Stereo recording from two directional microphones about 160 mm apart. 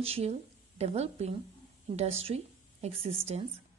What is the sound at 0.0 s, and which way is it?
A woman's voice, 40° right (ahead or behind).